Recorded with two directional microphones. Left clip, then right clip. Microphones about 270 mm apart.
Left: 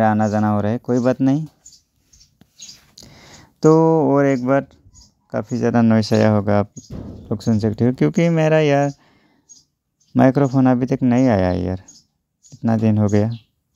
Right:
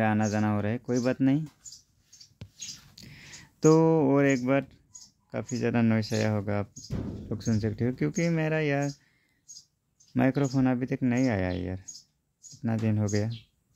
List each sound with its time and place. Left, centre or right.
0.0 s speech: centre
2.9 s a sound: centre
5.3 s speech: centre
10.1 s speech: left